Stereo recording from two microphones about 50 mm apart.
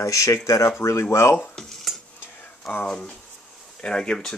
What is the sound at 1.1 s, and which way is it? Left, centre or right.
Speech, left.